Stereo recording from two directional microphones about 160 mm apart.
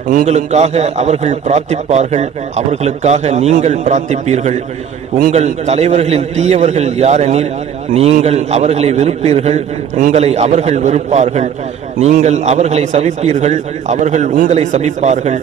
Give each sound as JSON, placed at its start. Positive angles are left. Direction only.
{"t": 0.1, "sound": "a man's voice", "side_deg": -45}